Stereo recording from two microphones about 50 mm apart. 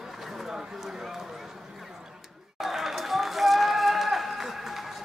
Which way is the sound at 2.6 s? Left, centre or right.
Centre.